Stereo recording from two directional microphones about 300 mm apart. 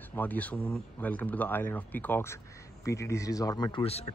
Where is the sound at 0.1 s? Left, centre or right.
Centre.